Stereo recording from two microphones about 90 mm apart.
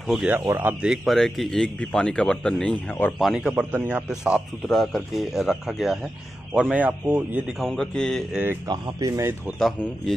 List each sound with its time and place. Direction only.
0.0 s speech: centre (ahead or behind)
0.5 s speech: 25° right (ahead or behind)
0.8 s speech: centre (ahead or behind)
3.2 s speech: 5° right (ahead or behind)
6.5 s speech: 15° right (ahead or behind)
7.4 s speech: 5° left (ahead or behind)
8.6 s speech: 45° right (ahead or behind)
9.6 s speech: centre (ahead or behind)